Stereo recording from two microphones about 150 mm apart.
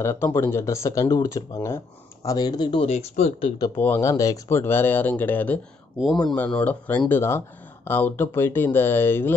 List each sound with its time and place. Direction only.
0.0 s speech: 15° left (ahead or behind)
2.9 s speech: 45° left (ahead or behind)
3.7 s speech: 15° left (ahead or behind)
5.9 s speech: centre (ahead or behind)